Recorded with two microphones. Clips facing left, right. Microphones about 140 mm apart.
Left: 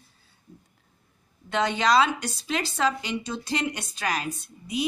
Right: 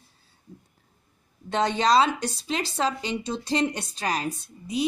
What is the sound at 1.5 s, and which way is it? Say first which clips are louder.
Speech: right 1 dB; 35° right (ahead or behind).